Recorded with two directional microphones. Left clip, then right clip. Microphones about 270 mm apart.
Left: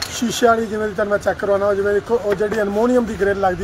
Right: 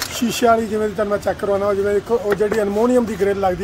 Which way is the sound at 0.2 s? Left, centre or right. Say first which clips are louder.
Even; centre.